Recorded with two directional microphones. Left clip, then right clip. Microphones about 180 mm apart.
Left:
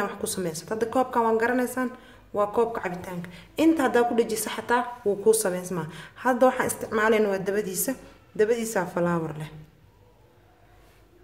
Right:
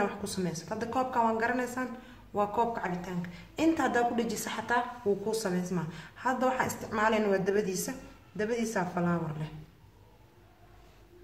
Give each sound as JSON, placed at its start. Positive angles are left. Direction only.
{"t": 0.0, "sound": "a woman's voice", "side_deg": 40}
{"t": 5.3, "sound": "a woman's voice", "side_deg": 40}